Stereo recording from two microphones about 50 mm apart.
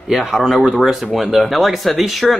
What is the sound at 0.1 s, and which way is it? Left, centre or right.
Speech, centre.